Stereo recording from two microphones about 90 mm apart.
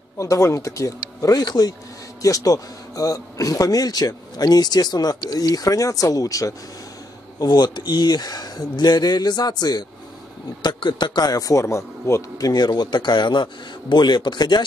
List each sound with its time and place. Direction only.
0.2 s speech: 35° left (ahead or behind); by 14.6 s 55° left (ahead or behind)